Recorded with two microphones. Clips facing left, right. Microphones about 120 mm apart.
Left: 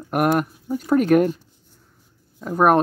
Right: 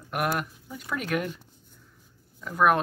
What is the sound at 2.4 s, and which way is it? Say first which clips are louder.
Speech: left 6 dB; 40° left (ahead or behind).